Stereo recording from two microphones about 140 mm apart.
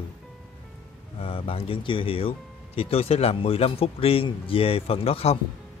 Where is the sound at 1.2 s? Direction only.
40° left (ahead or behind).